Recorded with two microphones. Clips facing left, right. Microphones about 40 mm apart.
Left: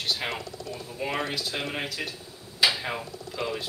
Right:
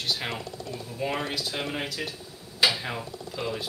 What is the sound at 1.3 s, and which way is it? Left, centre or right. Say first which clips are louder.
Speech: even; centre.